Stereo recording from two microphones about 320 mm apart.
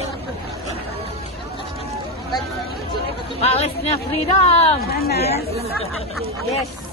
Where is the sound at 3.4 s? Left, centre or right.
Centre.